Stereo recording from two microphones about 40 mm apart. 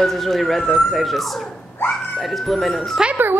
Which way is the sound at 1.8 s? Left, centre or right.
Left.